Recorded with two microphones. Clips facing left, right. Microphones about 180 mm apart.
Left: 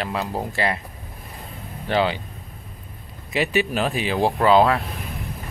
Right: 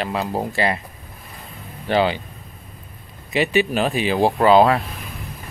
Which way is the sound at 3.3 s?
Centre (ahead or behind).